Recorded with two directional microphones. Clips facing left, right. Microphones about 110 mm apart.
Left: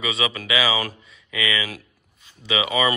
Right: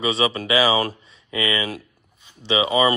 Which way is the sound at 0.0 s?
30° right (ahead or behind).